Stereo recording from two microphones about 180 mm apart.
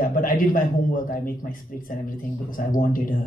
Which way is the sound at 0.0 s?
50° left (ahead or behind).